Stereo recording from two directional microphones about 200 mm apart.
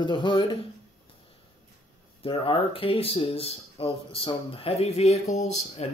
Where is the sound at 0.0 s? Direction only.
25° left (ahead or behind).